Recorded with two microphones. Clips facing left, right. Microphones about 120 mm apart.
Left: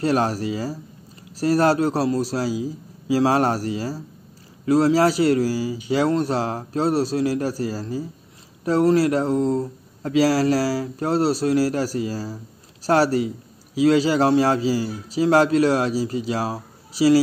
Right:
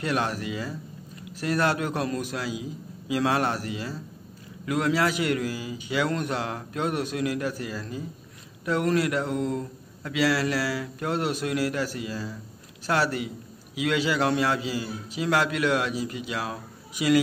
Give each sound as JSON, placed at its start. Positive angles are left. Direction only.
{"t": 0.0, "sound": "speech", "side_deg": 35}